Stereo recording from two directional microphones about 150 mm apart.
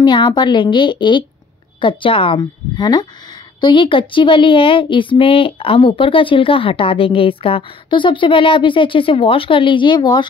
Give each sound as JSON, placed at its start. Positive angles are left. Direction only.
{"t": 0.0, "sound": "speech", "side_deg": 30}